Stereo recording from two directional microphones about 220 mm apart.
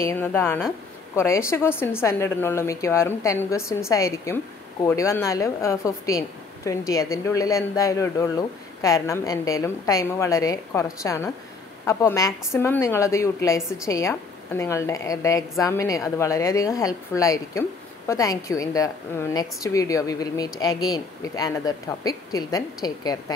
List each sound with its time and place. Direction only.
0.0 s a woman's voice: 10° left (ahead or behind)